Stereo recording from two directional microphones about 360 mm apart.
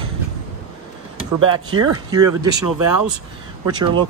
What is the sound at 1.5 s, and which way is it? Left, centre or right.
Speech, centre.